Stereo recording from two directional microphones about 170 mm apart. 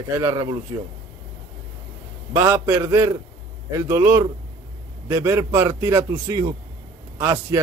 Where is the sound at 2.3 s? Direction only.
15° right (ahead or behind).